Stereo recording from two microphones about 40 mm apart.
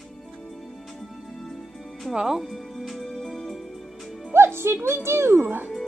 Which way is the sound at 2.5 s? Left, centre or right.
Centre.